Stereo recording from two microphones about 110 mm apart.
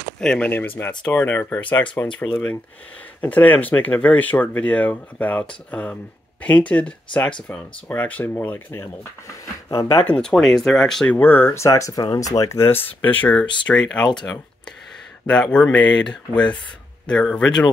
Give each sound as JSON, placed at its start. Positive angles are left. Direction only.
{"t": 0.2, "sound": "speech", "side_deg": 5}
{"t": 0.5, "sound": "speech", "side_deg": 15}
{"t": 10.0, "sound": "speech", "side_deg": 10}
{"t": 11.1, "sound": "speech", "side_deg": 20}
{"t": 15.2, "sound": "speech", "side_deg": 10}